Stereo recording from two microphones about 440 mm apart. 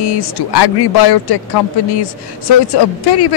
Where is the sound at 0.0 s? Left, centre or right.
Left.